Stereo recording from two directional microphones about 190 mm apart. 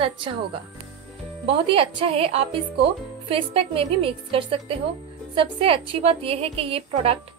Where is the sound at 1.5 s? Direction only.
30° right (ahead or behind).